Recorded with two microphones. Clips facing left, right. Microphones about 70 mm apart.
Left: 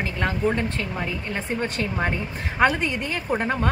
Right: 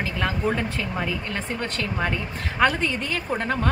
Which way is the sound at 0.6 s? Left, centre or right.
Centre.